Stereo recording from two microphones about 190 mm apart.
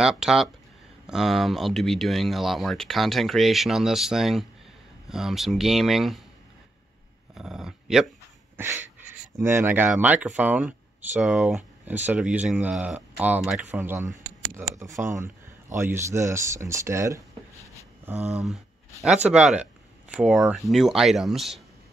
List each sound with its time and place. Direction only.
0.0 s speech: 5° right (ahead or behind)
7.3 s speech: centre (ahead or behind)
9.4 s speech: 15° right (ahead or behind)
19.3 s speech: 5° right (ahead or behind)